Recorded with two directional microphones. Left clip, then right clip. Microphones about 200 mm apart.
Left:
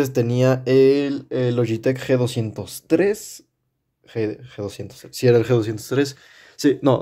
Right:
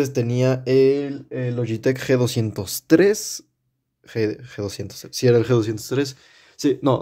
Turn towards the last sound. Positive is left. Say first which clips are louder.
# left 2 dB
turn(degrees=0)  # may be behind; listen again after turning